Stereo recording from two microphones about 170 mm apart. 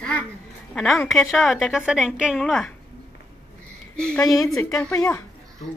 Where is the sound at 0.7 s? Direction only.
Centre (ahead or behind).